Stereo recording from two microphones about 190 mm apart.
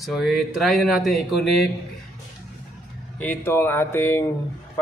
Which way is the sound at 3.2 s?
10° left (ahead or behind).